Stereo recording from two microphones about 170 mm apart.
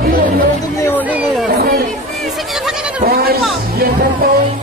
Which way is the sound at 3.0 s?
65° right (ahead or behind).